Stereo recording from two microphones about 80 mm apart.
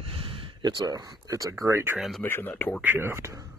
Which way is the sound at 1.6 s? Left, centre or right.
Right.